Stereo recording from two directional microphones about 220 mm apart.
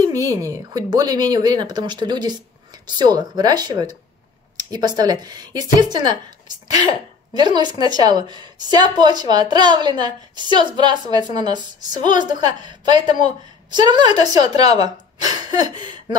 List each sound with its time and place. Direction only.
0.0 s a woman's voice: 15° right (ahead or behind)
7.3 s a woman's voice: 20° right (ahead or behind)